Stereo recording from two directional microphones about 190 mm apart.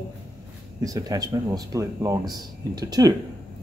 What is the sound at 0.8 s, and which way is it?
Speech, 20° right (ahead or behind).